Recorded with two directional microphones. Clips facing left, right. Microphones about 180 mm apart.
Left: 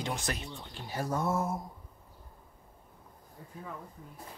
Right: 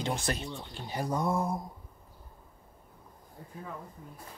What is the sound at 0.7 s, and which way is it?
Speech, 15° right (ahead or behind).